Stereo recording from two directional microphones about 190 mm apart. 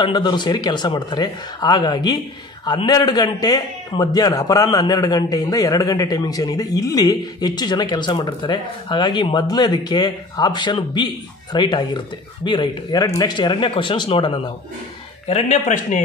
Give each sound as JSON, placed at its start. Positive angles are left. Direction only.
{"t": 0.0, "sound": "a man's voice", "side_deg": 20}